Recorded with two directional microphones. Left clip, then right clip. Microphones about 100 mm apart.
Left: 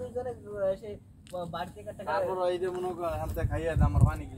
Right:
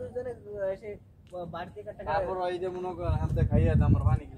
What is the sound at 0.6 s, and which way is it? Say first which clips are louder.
Speech: left 3 dB; 40° left (ahead or behind).